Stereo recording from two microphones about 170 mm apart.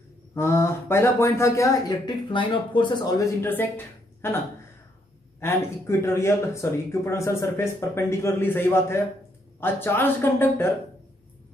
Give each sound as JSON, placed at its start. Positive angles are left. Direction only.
{"t": 0.3, "sound": "speech", "side_deg": 15}
{"t": 3.4, "sound": "a woman's voice", "side_deg": 10}
{"t": 5.4, "sound": "speech", "side_deg": 15}